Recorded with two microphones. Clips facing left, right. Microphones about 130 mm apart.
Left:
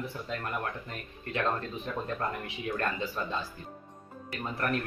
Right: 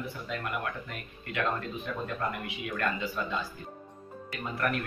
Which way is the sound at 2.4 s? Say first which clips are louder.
Even; 35° left (ahead or behind).